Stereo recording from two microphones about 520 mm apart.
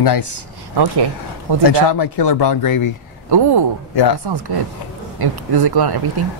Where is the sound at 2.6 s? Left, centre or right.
Left.